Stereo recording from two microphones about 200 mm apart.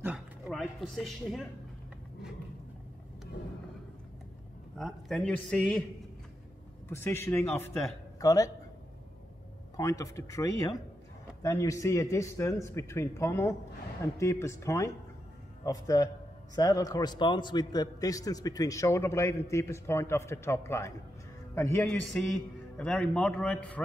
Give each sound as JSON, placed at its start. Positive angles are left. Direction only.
{"t": 0.0, "sound": "a sound", "side_deg": -5}
{"t": 4.7, "sound": "a man's voice", "side_deg": 0}
{"t": 6.9, "sound": "a man's voice", "side_deg": 10}
{"t": 9.8, "sound": "a man's voice", "side_deg": 15}